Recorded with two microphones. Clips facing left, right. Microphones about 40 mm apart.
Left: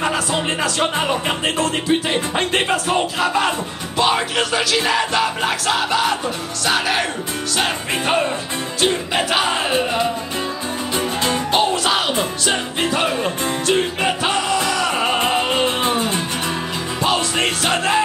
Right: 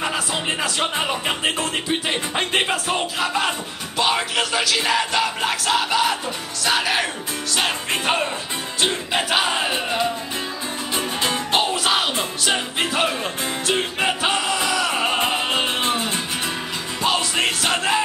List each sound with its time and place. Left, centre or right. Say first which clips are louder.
0.0 s music: left 4 dB; centre